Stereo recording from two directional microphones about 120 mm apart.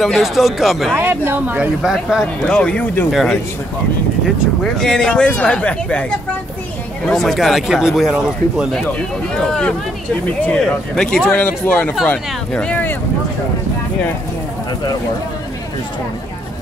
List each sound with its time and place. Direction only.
0.0 s speech: centre (ahead or behind)
0.9 s speech: 20° right (ahead or behind)
1.8 s speech: 5° right (ahead or behind)
2.6 s speech: 10° left (ahead or behind)
3.1 s speech: centre (ahead or behind)
4.7 s speech: 5° left (ahead or behind)
9.3 s speech: 5° left (ahead or behind)